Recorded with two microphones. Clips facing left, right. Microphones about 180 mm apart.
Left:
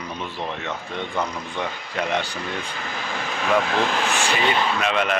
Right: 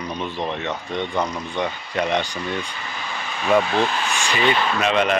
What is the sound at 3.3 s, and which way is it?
Speech, 90° left.